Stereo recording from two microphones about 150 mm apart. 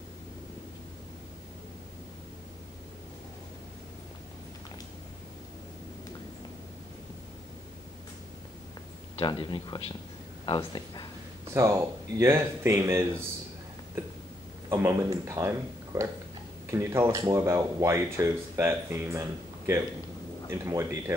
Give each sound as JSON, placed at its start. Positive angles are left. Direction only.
{"t": 9.2, "sound": "speech", "side_deg": 30}
{"t": 11.5, "sound": "speech", "side_deg": -20}
{"t": 14.7, "sound": "speech", "side_deg": -15}